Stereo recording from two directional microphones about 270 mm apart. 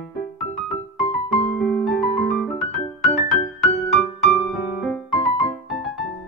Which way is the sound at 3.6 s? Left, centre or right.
Centre.